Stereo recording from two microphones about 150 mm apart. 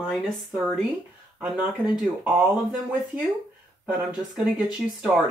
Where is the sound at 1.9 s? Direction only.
5° right (ahead or behind).